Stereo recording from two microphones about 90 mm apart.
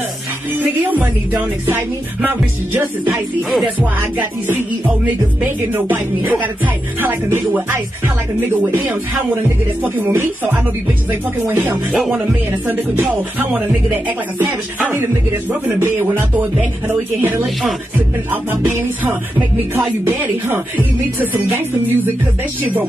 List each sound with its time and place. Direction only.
0.6 s speech: 20° right (ahead or behind)
1.7 s music: 20° right (ahead or behind)
3.4 s music: centre (ahead or behind)
5.4 s music: 20° right (ahead or behind)
11.9 s music: 5° right (ahead or behind)
13.0 s speech: 15° right (ahead or behind)
13.8 s music: 25° right (ahead or behind)